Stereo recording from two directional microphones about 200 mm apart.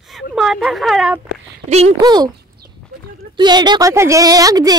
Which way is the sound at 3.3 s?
20° right (ahead or behind).